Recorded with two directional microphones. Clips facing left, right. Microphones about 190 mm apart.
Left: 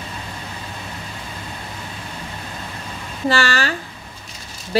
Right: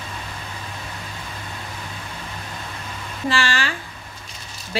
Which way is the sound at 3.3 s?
40° left (ahead or behind).